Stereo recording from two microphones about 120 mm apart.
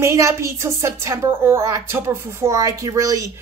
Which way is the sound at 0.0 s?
25° right (ahead or behind).